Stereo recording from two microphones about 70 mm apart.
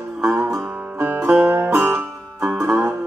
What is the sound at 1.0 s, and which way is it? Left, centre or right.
Music, right.